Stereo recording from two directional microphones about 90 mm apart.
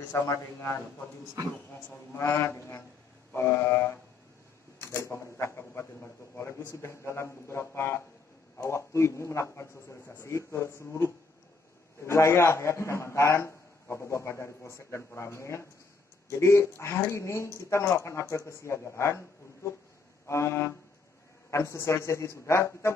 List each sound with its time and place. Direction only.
0.1 s a man's voice: 30° left (ahead or behind)
1.9 s a man's voice: 30° left (ahead or behind)